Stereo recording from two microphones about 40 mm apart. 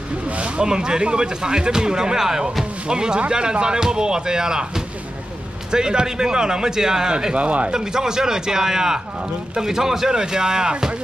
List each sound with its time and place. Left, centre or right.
0.3 s speech: right
0.7 s a man's voice: centre
7.3 s speech: right
7.7 s a man's voice: centre